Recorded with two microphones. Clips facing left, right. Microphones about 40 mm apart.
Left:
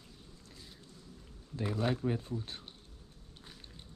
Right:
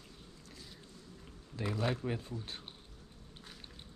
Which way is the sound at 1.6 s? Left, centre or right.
Right.